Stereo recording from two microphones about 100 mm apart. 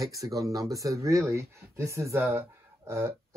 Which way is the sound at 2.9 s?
25° right (ahead or behind).